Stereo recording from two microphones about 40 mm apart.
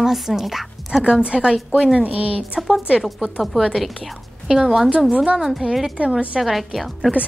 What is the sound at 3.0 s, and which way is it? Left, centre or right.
Speech, centre.